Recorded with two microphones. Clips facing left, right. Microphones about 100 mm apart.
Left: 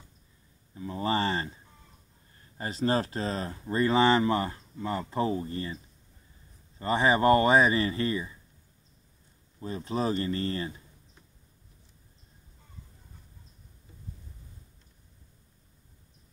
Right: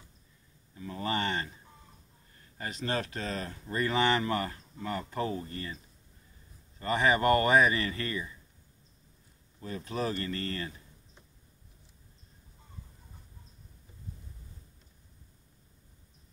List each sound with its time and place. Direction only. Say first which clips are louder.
0.7 s speech: left 4 dB; 25° left (ahead or behind)
6.8 s speech: left 3 dB; 30° left (ahead or behind)
9.6 s speech: left 3 dB; 30° left (ahead or behind)